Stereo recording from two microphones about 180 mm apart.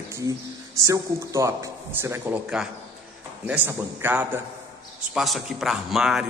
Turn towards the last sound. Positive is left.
turn(degrees=0)  # may be behind; listen again after turning